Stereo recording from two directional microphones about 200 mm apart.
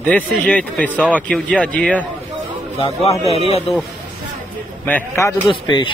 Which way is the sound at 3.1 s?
30° left (ahead or behind).